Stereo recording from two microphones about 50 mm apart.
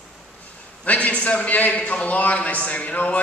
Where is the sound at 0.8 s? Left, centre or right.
Left.